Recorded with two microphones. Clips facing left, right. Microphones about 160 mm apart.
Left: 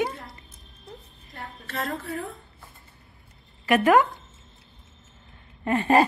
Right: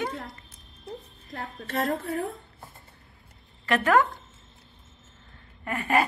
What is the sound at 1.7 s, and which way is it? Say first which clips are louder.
Speech: right 3 dB; 45° right (ahead or behind).